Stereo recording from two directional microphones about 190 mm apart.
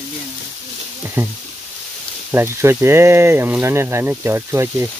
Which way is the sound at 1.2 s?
10° right (ahead or behind).